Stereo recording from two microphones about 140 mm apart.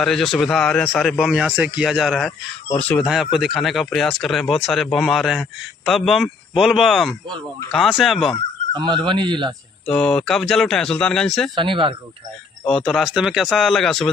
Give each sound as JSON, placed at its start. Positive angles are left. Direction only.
{"t": 0.0, "sound": "a man's voice", "side_deg": 0}
{"t": 2.7, "sound": "speech", "side_deg": 10}
{"t": 3.1, "sound": "a man's voice", "side_deg": -5}
{"t": 8.7, "sound": "speech", "side_deg": -35}
{"t": 9.8, "sound": "a man's voice", "side_deg": 5}
{"t": 11.5, "sound": "speech", "side_deg": -35}
{"t": 12.6, "sound": "a man's voice", "side_deg": 0}